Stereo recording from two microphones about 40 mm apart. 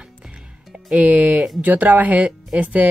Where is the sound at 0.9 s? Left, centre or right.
Right.